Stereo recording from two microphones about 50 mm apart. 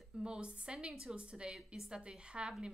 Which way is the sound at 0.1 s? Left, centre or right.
Centre.